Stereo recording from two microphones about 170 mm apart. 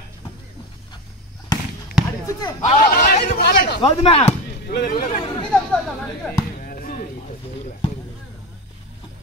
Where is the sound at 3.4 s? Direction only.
70° left (ahead or behind).